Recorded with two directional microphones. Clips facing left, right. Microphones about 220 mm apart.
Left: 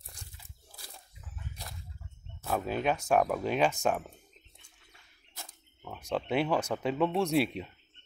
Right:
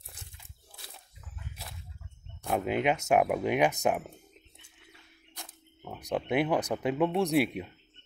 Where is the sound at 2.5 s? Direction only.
20° right (ahead or behind).